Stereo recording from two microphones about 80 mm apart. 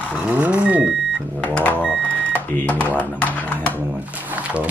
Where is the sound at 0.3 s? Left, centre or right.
Centre.